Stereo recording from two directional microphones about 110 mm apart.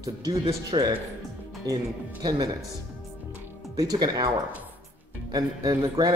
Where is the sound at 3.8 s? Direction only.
35° right (ahead or behind).